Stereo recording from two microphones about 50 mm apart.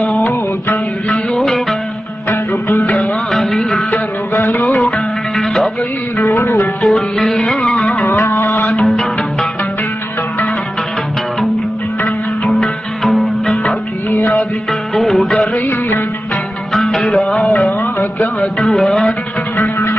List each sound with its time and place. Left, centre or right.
0.0 s music: centre
3.0 s music: centre
3.9 s a sound: left
4.5 s music: centre
6.3 s music: left
6.8 s music: centre
8.1 s music: left
8.6 s music: centre
12.4 s music: centre
14.2 s music of bollywood: centre
16.7 s music: centre